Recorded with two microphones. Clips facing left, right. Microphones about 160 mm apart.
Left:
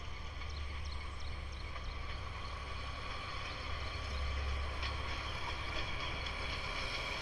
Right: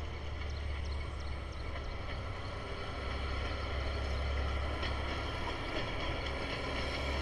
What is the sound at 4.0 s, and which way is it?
Vehicle, 55° right (ahead or behind).